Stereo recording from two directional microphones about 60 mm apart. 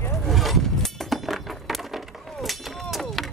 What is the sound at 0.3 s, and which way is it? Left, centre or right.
Chink, centre.